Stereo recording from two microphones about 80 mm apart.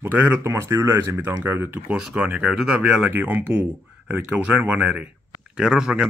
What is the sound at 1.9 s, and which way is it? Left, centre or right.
Speech, centre.